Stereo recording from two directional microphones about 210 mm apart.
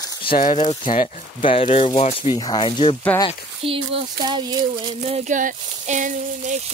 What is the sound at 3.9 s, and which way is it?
Speech, 25° right (ahead or behind).